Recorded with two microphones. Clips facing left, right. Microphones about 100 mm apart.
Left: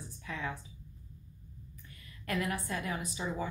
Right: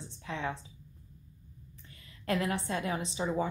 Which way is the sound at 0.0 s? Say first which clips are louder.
Right 3 dB; 25° right (ahead or behind).